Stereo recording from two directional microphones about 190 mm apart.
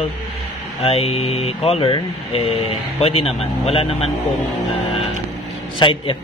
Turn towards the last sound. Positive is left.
turn(degrees=25)  # may be behind; listen again after turning